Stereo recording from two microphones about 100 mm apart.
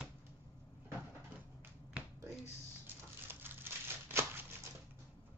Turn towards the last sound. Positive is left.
turn(degrees=-25)  # may be behind; listen again after turning